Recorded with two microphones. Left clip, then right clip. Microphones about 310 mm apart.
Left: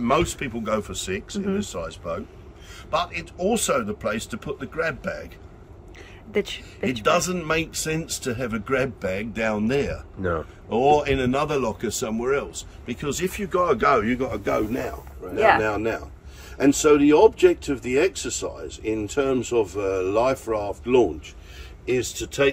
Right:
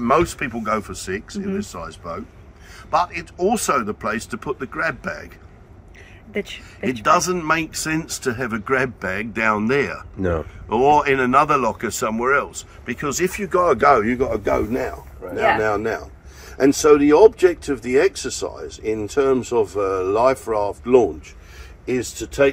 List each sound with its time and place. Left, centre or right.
0.0 s speech: centre
7.0 s speech: centre
10.2 s speech: right
10.8 s speech: centre